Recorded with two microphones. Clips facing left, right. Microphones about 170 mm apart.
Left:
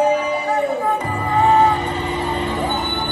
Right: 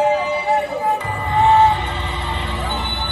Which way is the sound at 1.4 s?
40° left (ahead or behind).